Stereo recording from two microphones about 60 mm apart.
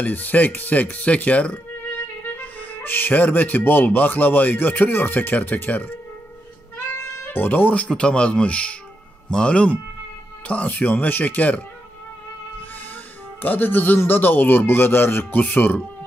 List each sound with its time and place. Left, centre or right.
0.0 s speech: left
7.0 s music: left
7.7 s speech: centre
13.4 s speech: left